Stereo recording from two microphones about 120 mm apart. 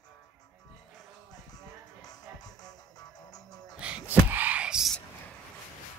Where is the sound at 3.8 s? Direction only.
10° right (ahead or behind).